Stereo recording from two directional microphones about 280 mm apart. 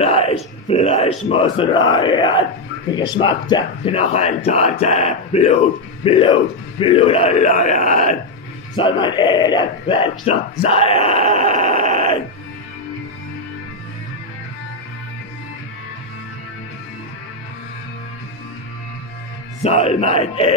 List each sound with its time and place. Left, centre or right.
0.0 s music: left
1.3 s speech: centre
1.9 s a sound: centre
2.9 s speech: centre
11.9 s music: left
19.6 s speech: left